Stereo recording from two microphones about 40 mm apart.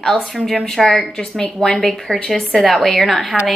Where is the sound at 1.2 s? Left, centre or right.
Centre.